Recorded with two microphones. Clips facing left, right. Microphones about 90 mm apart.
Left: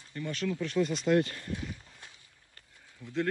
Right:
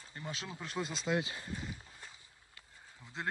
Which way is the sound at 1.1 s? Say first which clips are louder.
Left 6 dB; 55° left (ahead or behind).